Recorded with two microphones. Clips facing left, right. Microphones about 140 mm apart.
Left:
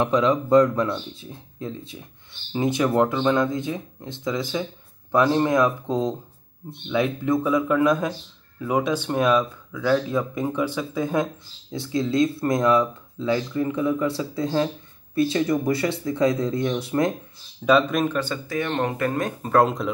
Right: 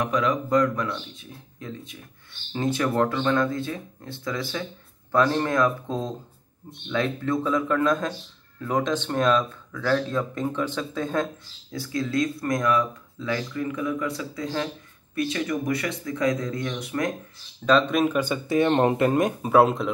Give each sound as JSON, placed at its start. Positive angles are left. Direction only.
{"t": 0.0, "sound": "speech", "side_deg": 25}
{"t": 2.5, "sound": "speech", "side_deg": 15}
{"t": 11.7, "sound": "speech", "side_deg": 25}
{"t": 17.6, "sound": "speech", "side_deg": 10}
{"t": 17.9, "sound": "speech", "side_deg": -5}
{"t": 18.2, "sound": "speech", "side_deg": -20}
{"t": 19.4, "sound": "speech", "side_deg": -5}